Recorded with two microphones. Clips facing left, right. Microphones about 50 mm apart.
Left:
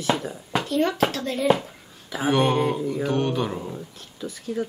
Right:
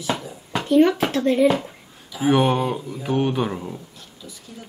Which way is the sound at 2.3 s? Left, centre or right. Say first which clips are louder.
Right 2 dB; centre.